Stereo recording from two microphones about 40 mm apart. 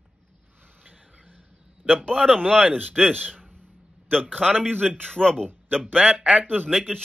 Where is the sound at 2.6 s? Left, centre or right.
Right.